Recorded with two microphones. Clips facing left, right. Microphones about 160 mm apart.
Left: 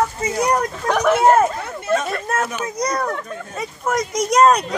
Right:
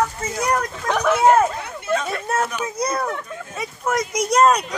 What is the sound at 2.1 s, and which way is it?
A child's voice, 10° right (ahead or behind).